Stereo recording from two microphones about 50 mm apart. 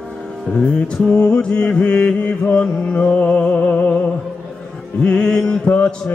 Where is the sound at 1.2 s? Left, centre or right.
Left.